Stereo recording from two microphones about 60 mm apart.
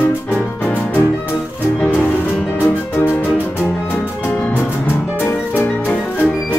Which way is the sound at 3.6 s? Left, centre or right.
Left.